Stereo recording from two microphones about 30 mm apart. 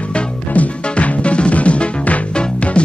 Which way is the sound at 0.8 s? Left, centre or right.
Left.